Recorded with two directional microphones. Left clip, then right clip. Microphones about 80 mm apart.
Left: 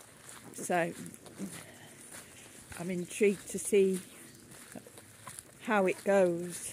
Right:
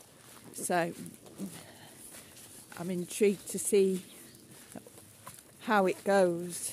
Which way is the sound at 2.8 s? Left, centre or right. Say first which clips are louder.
Right 1 dB; right.